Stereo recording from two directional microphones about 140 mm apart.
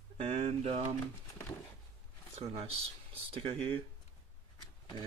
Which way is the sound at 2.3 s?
45° right (ahead or behind).